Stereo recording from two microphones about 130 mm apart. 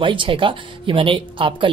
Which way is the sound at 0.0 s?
40° right (ahead or behind).